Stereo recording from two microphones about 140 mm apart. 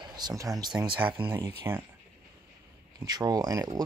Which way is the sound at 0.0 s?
30° right (ahead or behind).